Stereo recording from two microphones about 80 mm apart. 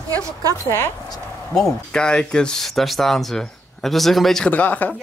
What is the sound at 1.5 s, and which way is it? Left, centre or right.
Speech, centre.